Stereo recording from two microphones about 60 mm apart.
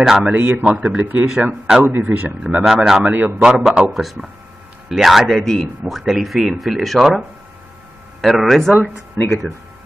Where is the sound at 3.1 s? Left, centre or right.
Right.